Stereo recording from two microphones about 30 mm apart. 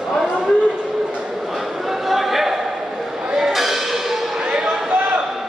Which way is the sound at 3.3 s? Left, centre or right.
Centre.